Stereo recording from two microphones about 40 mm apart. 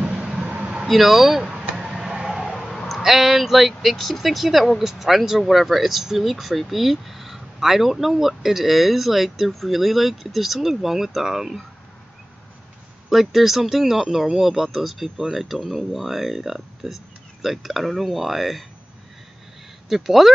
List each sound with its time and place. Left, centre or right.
0.0 s vehicle: right
0.5 s vehicle: right
0.8 s speech: centre
1.8 s a sound: centre
2.4 s a sound: centre
3.0 s speech: centre
13.1 s speech: centre
19.9 s speech: centre